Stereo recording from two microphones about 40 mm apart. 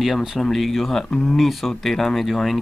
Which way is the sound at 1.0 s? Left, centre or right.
Centre.